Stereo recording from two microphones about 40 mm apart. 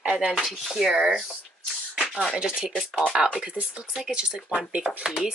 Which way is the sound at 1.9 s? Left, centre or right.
Centre.